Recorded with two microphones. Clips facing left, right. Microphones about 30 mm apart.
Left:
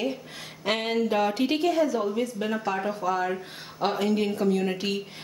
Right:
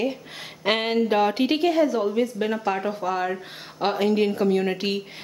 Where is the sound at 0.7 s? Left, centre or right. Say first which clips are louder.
Right 4 dB; right.